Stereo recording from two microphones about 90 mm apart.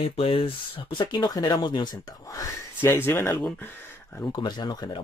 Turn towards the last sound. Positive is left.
turn(degrees=50)  # may be behind; listen again after turning